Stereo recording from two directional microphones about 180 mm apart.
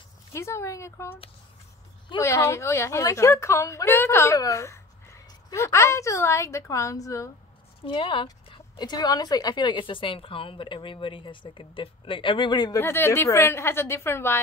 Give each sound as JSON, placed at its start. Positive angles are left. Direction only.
{"t": 0.3, "sound": "a woman's voice", "side_deg": 15}
{"t": 7.8, "sound": "speech", "side_deg": 30}